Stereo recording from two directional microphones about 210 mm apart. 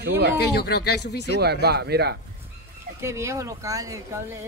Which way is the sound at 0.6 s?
50° left (ahead or behind).